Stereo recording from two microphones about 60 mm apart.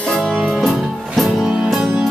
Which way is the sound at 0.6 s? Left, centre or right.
Centre.